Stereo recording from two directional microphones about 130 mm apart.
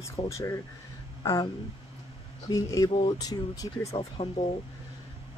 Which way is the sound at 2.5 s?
25° left (ahead or behind).